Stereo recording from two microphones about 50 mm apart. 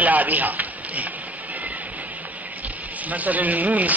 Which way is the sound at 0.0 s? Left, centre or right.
Right.